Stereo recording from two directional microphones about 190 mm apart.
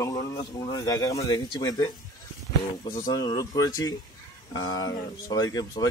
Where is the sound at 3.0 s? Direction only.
20° left (ahead or behind).